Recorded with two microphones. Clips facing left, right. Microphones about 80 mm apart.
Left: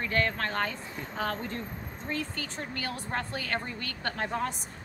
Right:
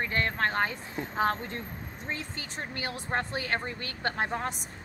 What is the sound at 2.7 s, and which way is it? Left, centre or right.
Speech, centre.